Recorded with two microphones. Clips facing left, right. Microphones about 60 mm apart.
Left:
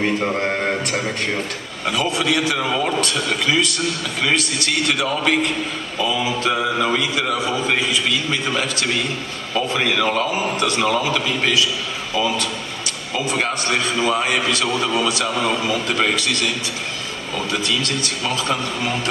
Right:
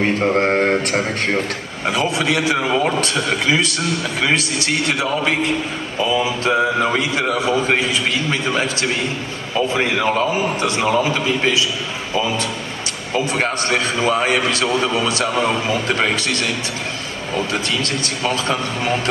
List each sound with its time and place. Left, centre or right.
0.2 s a sound: right
2.1 s a man's voice: right
4.6 s a man's voice: right
17.5 s a man's voice: right